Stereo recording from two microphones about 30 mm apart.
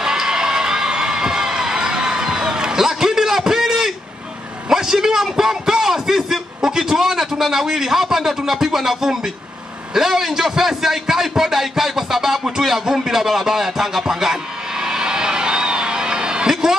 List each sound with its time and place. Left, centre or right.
0.0 s crowd: centre
4.6 s a sound: centre
6.6 s a man's voice: centre